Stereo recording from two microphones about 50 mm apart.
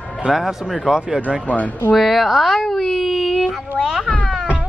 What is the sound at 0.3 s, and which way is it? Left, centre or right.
Speech, centre.